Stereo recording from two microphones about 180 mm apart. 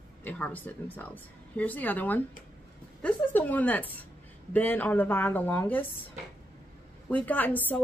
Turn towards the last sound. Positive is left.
turn(degrees=10)  # may be behind; listen again after turning